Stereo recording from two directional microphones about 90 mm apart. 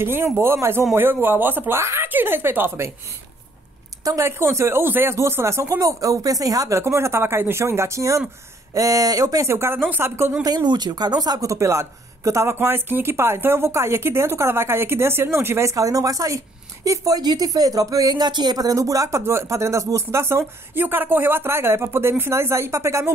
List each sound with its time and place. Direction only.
0.0 s speech: 25° right (ahead or behind)
4.0 s speech: 40° right (ahead or behind)
4.3 s speech: 30° right (ahead or behind)
6.8 s speech: 30° right (ahead or behind)
10.4 s speech: 50° right (ahead or behind); by 23.1 s 35° right (ahead or behind)